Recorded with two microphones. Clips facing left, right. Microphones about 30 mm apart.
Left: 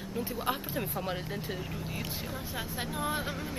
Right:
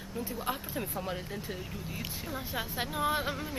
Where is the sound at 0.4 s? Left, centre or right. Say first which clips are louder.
Left 2 dB; centre.